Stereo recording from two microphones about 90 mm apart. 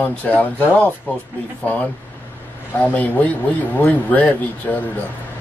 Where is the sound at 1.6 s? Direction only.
15° left (ahead or behind).